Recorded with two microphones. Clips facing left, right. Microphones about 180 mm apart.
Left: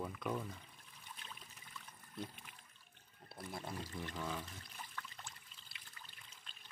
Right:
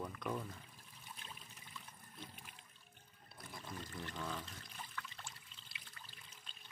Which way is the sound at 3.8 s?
10° left (ahead or behind).